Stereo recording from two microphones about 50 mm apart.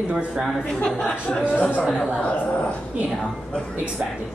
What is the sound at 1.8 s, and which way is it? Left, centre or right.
Speech, centre.